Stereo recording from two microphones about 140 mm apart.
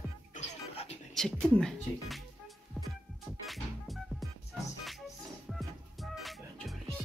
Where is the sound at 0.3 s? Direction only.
55° left (ahead or behind).